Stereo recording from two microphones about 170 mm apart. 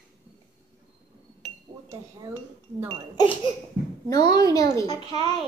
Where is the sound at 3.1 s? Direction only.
30° left (ahead or behind).